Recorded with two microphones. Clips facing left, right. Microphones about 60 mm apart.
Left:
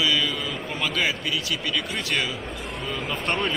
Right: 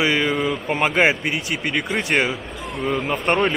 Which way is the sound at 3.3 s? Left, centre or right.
Right.